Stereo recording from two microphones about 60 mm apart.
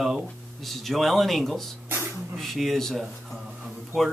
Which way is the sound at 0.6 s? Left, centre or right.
Centre.